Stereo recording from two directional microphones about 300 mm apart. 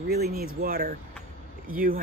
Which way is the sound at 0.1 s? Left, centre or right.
Right.